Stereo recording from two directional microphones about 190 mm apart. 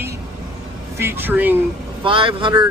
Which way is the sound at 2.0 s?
25° right (ahead or behind).